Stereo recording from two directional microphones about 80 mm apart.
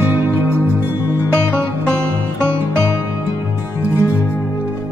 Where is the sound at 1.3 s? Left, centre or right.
Centre.